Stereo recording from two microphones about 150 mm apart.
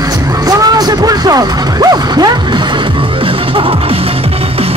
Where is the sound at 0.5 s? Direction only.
25° right (ahead or behind).